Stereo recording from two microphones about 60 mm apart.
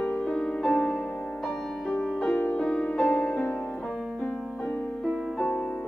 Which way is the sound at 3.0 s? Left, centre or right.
Left.